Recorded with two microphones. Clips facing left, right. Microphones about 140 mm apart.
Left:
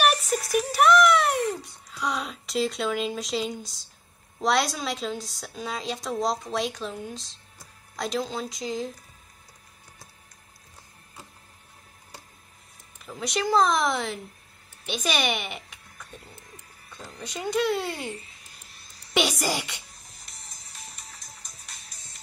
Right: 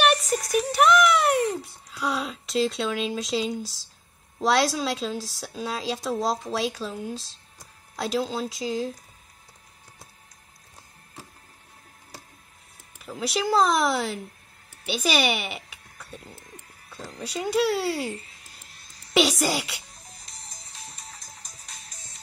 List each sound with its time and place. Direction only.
0.0 s a sound: centre (ahead or behind)
4.4 s a woman's voice: centre (ahead or behind)
13.0 s speech: 5° right (ahead or behind)
17.4 s speech: 10° right (ahead or behind)
19.1 s a woman's voice: centre (ahead or behind)
20.8 s music: 30° right (ahead or behind)